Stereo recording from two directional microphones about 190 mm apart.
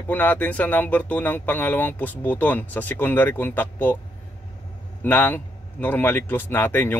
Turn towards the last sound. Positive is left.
turn(degrees=10)  # may be behind; listen again after turning